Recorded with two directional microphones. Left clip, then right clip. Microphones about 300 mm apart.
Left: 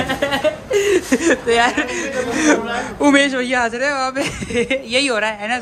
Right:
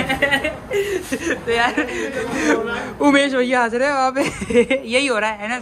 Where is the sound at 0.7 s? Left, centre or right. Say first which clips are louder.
Left 7 dB; left.